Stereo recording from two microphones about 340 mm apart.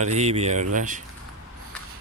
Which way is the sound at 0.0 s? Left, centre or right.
Centre.